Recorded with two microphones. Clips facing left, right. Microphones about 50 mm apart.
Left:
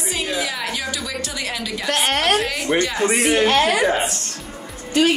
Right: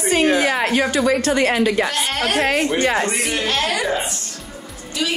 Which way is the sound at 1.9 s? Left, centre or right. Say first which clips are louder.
Left 3 dB; left.